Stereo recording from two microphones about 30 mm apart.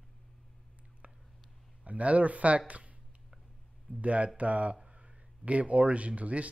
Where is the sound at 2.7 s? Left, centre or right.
Right.